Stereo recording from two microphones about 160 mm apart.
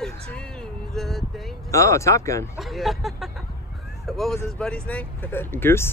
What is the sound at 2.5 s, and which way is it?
Speech, centre (ahead or behind).